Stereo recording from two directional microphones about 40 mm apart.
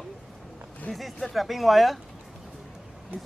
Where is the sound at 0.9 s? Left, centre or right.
Left.